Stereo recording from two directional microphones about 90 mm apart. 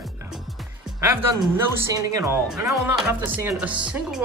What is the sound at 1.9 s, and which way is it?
Speech, 40° right (ahead or behind).